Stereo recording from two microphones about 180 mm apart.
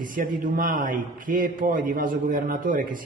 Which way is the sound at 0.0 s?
45° right (ahead or behind).